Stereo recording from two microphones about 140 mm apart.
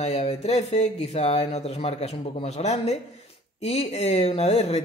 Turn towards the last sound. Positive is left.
turn(degrees=45)  # may be behind; listen again after turning